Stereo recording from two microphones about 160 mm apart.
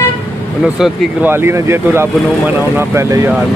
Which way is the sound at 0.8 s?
15° right (ahead or behind).